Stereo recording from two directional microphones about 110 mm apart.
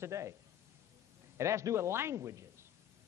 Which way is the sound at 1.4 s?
25° right (ahead or behind).